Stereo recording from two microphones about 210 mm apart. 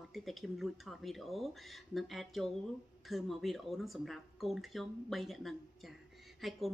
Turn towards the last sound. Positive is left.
turn(degrees=0)  # may be behind; listen again after turning